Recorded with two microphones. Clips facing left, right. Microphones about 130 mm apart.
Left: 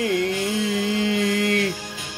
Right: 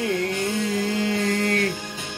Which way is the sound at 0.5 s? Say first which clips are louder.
Left 1 dB; 45° right (ahead or behind).